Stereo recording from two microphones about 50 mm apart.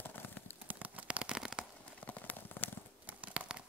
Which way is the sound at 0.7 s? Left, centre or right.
Right.